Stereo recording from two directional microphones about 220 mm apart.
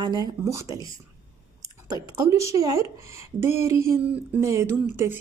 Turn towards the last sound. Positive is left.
turn(degrees=-10)  # may be behind; listen again after turning